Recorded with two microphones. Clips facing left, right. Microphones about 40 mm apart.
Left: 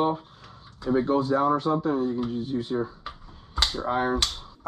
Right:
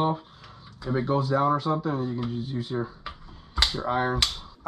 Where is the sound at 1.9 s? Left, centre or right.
Right.